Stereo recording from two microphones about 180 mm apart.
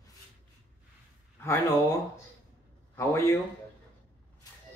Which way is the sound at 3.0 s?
15° left (ahead or behind).